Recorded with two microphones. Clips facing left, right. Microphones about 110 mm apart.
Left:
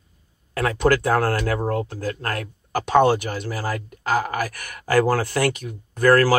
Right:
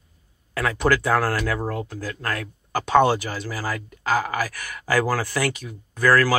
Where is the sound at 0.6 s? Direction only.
45° left (ahead or behind).